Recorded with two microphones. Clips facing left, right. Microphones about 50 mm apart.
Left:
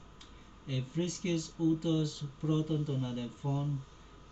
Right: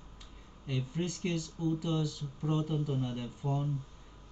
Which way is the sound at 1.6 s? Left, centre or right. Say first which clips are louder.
Left 3 dB; right.